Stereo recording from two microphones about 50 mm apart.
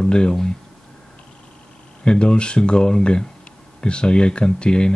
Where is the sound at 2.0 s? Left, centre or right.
Centre.